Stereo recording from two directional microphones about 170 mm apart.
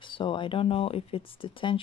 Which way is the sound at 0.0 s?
30° left (ahead or behind).